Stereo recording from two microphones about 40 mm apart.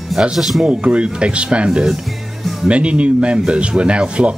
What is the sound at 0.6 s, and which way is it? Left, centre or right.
A man's voice, right.